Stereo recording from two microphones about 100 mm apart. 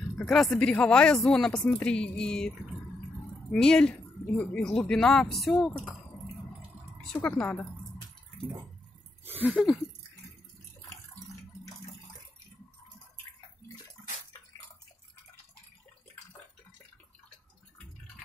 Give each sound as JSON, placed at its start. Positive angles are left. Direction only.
{"t": 0.2, "sound": "speech", "side_deg": 5}
{"t": 3.5, "sound": "speech", "side_deg": 10}
{"t": 7.2, "sound": "speech", "side_deg": 15}
{"t": 9.2, "sound": "a sound", "side_deg": -20}